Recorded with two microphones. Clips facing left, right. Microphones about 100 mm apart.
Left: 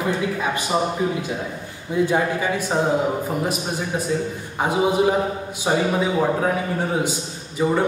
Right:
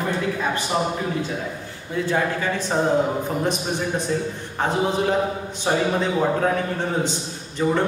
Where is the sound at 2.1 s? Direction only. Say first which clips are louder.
Right 3 dB; 15° left (ahead or behind).